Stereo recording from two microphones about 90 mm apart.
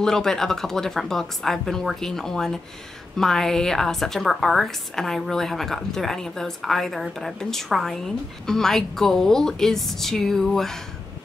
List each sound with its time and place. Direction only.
0.0 s a woman's voice: 5° left (ahead or behind)